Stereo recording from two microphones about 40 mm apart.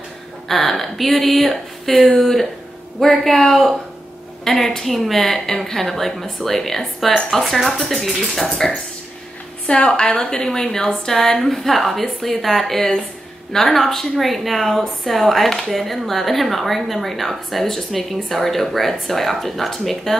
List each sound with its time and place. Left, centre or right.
0.5 s a woman's voice: centre
9.7 s a woman's voice: left
9.9 s a woman's voice: left; by 20.2 s centre